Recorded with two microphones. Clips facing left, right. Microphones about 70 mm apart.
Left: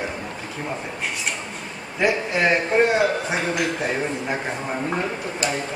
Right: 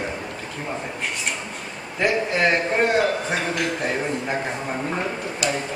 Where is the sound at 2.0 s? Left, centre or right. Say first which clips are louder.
Even; centre.